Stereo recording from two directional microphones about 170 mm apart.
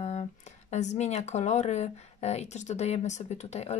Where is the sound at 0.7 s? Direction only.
40° left (ahead or behind).